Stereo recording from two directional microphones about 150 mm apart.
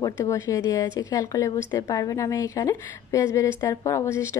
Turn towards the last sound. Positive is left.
turn(degrees=20)  # may be behind; listen again after turning